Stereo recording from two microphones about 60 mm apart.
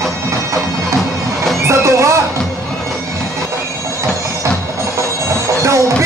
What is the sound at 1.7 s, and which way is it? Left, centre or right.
Music, right.